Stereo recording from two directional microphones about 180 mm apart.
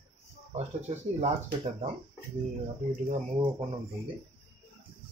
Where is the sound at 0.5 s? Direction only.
40° right (ahead or behind).